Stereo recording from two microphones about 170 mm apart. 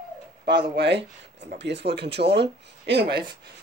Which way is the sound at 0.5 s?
80° right.